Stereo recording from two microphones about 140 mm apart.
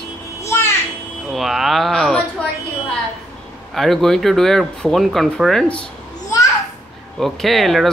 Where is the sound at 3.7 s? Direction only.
Centre (ahead or behind).